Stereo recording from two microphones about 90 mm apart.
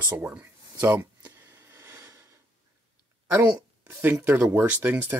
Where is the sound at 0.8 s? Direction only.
20° right (ahead or behind).